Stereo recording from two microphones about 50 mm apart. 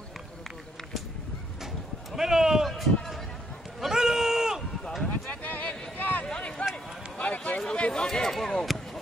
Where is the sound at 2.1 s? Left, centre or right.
Centre.